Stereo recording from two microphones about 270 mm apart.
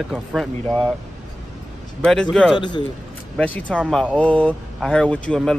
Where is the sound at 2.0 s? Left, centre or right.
Centre.